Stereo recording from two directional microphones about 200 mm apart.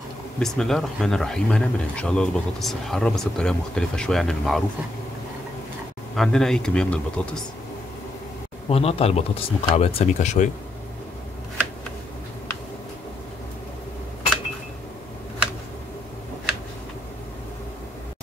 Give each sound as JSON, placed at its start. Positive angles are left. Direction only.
{"t": 0.4, "sound": "speech", "side_deg": 0}
{"t": 6.1, "sound": "speech", "side_deg": 5}
{"t": 8.6, "sound": "speech", "side_deg": 30}